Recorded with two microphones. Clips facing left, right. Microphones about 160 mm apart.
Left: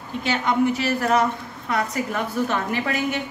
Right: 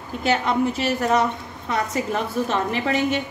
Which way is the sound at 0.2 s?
40° right (ahead or behind).